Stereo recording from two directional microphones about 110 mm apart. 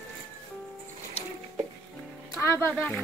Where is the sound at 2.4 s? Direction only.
20° left (ahead or behind).